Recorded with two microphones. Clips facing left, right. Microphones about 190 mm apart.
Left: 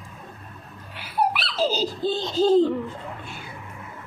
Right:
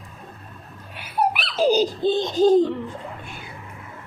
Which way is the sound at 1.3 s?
15° right (ahead or behind).